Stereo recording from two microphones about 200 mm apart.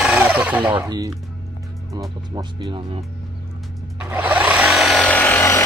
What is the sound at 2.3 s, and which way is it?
Speech, 25° right (ahead or behind).